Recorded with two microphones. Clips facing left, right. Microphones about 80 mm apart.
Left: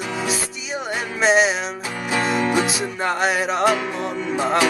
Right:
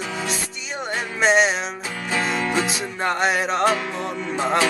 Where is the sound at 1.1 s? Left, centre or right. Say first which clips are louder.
Left 1 dB; centre.